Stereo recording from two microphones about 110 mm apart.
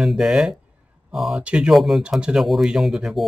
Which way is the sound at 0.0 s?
5° right (ahead or behind).